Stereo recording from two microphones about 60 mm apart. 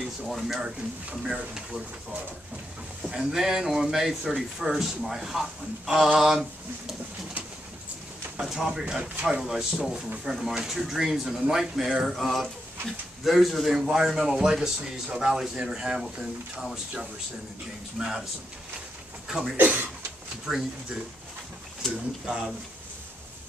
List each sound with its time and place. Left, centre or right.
0.2 s speech: centre
3.0 s speech: centre
8.4 s speech: centre
9.4 s speech: centre
19.2 s a sound: centre
19.5 s speech: right
20.4 s speech: centre
22.2 s speech: centre